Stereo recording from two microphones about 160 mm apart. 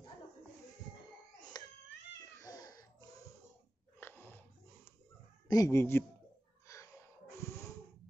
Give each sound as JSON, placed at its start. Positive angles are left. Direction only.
{"t": 1.4, "sound": "crying", "side_deg": 25}
{"t": 2.4, "sound": "a sound", "side_deg": 20}
{"t": 4.0, "sound": "wheeze", "side_deg": 10}
{"t": 5.5, "sound": "speech", "side_deg": 20}
{"t": 6.7, "sound": "snort", "side_deg": 20}